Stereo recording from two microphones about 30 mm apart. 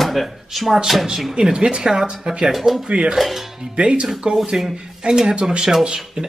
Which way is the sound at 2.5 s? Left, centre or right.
Centre.